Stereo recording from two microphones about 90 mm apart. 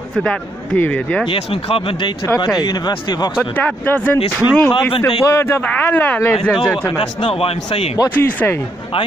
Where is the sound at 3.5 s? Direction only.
15° left (ahead or behind).